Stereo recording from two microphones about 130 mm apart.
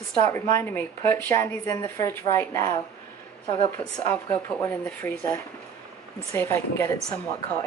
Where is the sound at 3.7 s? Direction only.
15° left (ahead or behind).